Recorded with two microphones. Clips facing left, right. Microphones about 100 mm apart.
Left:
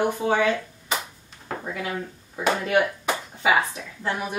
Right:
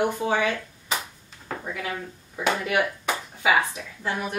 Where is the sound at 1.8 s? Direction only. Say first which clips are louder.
Left 2 dB; 20° left (ahead or behind).